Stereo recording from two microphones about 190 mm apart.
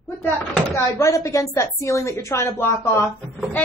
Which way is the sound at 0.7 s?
15° left (ahead or behind).